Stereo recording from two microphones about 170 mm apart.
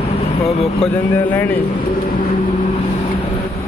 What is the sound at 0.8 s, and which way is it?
Speech, 10° left (ahead or behind).